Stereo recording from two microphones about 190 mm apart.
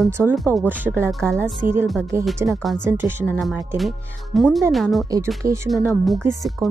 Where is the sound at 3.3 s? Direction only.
Centre (ahead or behind).